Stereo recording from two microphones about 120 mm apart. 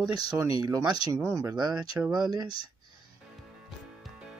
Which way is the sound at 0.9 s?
50° left (ahead or behind).